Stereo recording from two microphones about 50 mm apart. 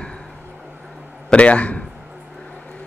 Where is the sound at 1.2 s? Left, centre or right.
Left.